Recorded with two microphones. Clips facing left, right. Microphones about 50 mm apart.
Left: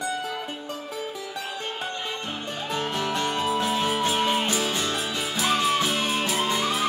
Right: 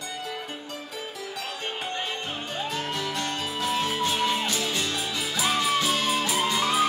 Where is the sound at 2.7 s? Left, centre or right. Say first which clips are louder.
Left 6 dB; left.